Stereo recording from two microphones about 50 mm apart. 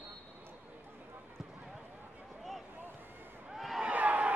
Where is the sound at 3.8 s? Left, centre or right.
Right.